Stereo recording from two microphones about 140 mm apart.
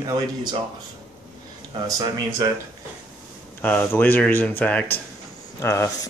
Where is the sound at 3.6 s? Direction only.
10° left (ahead or behind).